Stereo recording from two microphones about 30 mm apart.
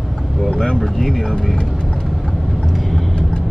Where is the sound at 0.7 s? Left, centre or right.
Centre.